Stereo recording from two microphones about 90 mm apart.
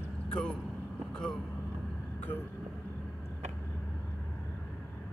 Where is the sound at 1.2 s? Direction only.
10° left (ahead or behind).